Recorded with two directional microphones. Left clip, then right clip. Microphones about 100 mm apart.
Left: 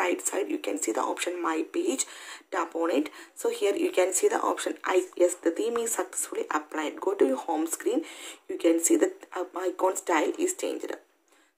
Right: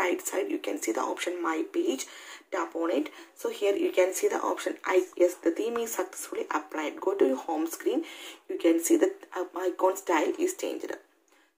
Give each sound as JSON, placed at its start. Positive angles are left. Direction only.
{"t": 0.0, "sound": "speech", "side_deg": 35}